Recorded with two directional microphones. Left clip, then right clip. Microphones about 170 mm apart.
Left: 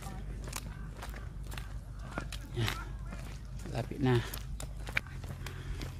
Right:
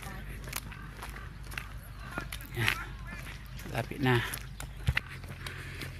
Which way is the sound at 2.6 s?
10° left (ahead or behind).